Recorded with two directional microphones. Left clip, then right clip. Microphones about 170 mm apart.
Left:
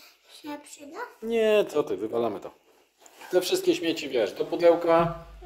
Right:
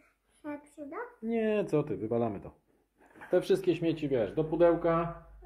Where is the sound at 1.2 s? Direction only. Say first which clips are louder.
Left 9 dB; 25° left (ahead or behind).